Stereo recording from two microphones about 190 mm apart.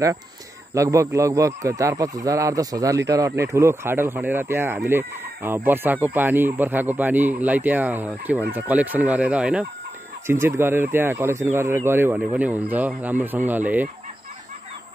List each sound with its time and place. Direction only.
0.7 s a man's voice: 15° right (ahead or behind)